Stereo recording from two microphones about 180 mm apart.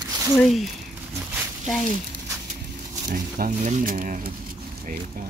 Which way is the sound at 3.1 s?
50° right (ahead or behind).